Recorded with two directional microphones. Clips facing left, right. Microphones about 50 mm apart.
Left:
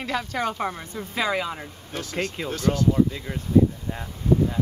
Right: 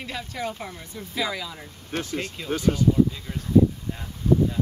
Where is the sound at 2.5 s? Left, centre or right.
Centre.